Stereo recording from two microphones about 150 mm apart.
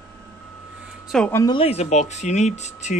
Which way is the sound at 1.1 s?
Centre (ahead or behind).